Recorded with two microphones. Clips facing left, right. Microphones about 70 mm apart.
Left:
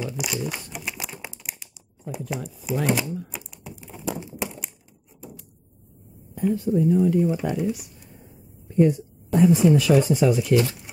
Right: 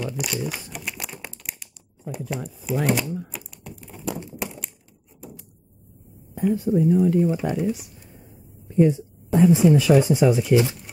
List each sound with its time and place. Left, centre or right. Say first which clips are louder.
0.0 s crumpling: right 1 dB; centre
3.3 s typing: even; centre
6.3 s speech: right 1 dB; right
6.8 s speech: right 1 dB; centre
8.6 s a woman's voice: right 1 dB; centre